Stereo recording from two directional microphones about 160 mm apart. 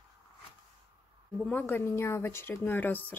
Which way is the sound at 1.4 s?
10° left (ahead or behind).